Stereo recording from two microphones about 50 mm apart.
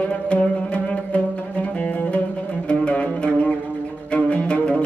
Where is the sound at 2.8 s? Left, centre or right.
Left.